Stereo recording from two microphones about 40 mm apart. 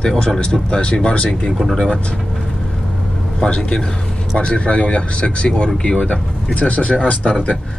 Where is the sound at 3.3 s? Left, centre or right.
Left.